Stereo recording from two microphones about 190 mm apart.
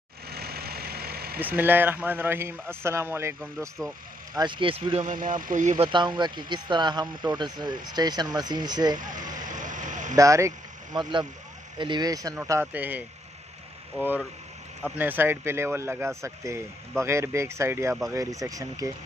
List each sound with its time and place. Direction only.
0.3 s vehicle: 55° right (ahead or behind)
1.6 s a man's voice: 10° right (ahead or behind)
4.4 s speech: 25° right (ahead or behind)
5.1 s speech: 45° right (ahead or behind)
5.9 s speech: 25° right (ahead or behind)
8.9 s vehicle: 45° right (ahead or behind)
10.1 s a man's voice: 15° right (ahead or behind)
15.0 s a man's voice: 10° right (ahead or behind)